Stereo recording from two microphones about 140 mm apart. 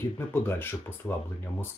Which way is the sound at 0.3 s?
15° left (ahead or behind).